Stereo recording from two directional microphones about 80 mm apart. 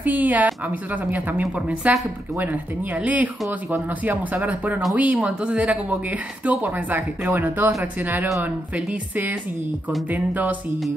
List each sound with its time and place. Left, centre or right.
0.0 s speech: right
3.0 s speech: centre